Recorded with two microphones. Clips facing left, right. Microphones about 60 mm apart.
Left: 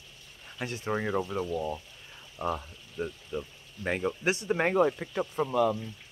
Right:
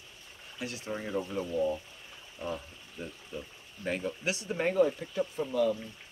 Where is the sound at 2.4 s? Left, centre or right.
Left.